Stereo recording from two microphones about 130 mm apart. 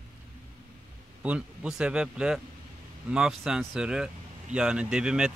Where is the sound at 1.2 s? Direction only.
10° right (ahead or behind).